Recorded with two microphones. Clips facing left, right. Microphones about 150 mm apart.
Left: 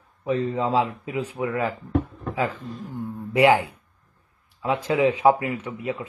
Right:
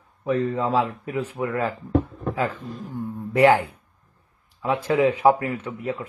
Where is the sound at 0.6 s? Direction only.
15° left (ahead or behind).